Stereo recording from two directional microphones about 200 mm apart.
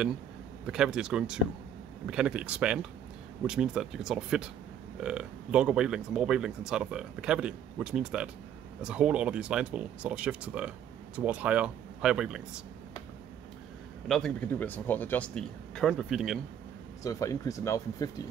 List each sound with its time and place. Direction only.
0.7 s speech: 5° right (ahead or behind)
14.0 s speech: centre (ahead or behind)
17.0 s speech: 15° left (ahead or behind)